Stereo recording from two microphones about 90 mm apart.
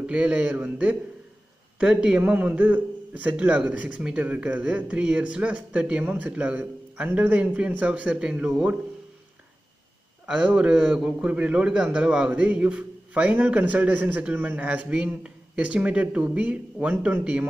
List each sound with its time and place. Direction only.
0.0 s a man's voice: 15° right (ahead or behind)
10.2 s a man's voice: 10° right (ahead or behind)